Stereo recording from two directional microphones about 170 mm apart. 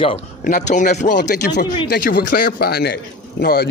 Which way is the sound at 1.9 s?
60° left (ahead or behind).